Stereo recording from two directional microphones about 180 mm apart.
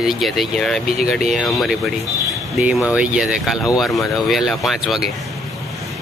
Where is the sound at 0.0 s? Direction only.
Centre (ahead or behind).